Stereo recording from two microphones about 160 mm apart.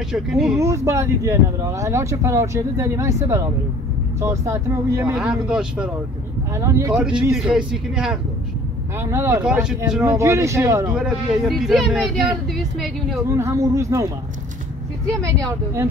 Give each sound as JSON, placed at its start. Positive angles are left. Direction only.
{"t": 0.1, "sound": "speech", "side_deg": -5}
{"t": 0.6, "sound": "speech", "side_deg": -20}
{"t": 5.1, "sound": "speech", "side_deg": -5}
{"t": 6.5, "sound": "a man's voice", "side_deg": -20}
{"t": 6.9, "sound": "speech", "side_deg": -5}
{"t": 9.0, "sound": "speech", "side_deg": -15}
{"t": 10.0, "sound": "speech", "side_deg": -15}
{"t": 10.9, "sound": "speech", "side_deg": -5}
{"t": 13.3, "sound": "a man's voice", "side_deg": -20}